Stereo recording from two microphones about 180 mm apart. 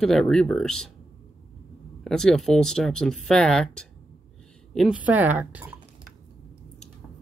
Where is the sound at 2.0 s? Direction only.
5° left (ahead or behind).